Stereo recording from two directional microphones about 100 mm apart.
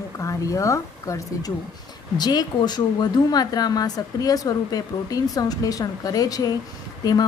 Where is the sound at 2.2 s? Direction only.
45° left (ahead or behind).